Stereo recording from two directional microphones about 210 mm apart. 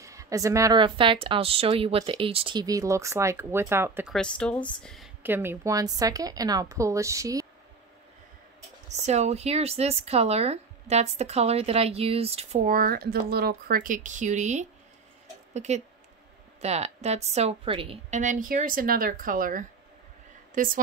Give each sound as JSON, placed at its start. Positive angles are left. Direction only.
{"t": 0.0, "sound": "a woman's voice", "side_deg": -15}
{"t": 4.1, "sound": "a woman's voice", "side_deg": 5}
{"t": 8.8, "sound": "speech", "side_deg": -35}